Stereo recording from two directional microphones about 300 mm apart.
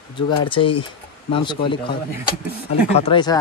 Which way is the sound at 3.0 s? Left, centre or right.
Centre.